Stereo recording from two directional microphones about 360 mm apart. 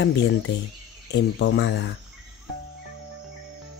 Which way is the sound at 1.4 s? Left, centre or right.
Left.